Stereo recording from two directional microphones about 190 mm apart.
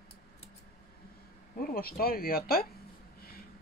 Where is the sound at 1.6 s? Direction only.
50° left (ahead or behind).